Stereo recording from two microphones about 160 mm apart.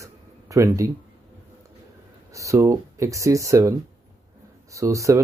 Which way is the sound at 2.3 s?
20° right (ahead or behind).